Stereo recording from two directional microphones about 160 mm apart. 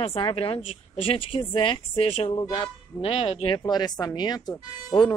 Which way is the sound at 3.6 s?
25° left (ahead or behind).